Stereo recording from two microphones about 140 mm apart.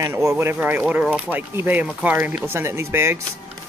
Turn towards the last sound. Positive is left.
turn(degrees=-15)  # may be behind; listen again after turning